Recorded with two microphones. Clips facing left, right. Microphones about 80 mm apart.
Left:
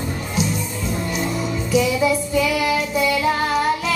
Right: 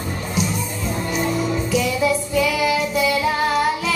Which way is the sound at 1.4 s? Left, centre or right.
Centre.